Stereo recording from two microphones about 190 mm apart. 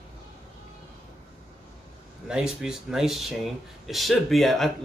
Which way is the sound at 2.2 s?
5° right (ahead or behind).